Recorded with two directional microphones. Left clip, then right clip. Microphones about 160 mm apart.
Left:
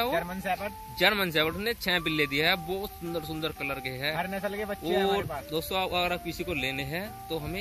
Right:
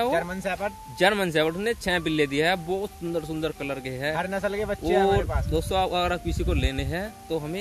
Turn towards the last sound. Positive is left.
turn(degrees=-40)  # may be behind; listen again after turning